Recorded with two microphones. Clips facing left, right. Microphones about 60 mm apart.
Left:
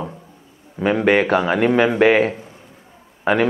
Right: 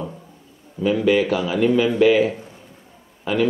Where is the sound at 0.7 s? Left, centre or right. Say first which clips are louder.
Left 2 dB; left.